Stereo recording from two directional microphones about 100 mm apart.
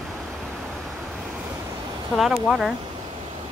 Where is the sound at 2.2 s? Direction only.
Centre (ahead or behind).